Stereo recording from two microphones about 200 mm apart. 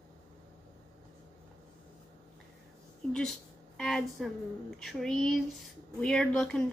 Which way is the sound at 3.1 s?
5° left (ahead or behind).